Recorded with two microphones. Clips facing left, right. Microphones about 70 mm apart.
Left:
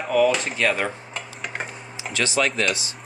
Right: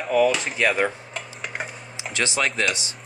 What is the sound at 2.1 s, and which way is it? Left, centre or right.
Speech, right.